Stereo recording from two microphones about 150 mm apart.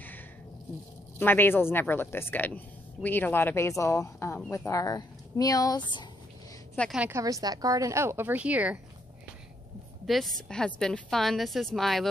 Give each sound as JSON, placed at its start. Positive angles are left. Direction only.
{"t": 1.2, "sound": "a woman's voice", "side_deg": 15}
{"t": 7.1, "sound": "speech", "side_deg": -20}
{"t": 10.0, "sound": "a woman's voice", "side_deg": 0}